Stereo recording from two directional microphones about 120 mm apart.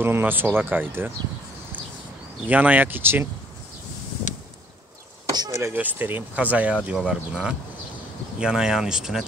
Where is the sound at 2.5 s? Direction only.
15° right (ahead or behind).